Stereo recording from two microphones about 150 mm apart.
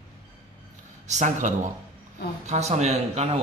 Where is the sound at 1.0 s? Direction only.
55° right (ahead or behind).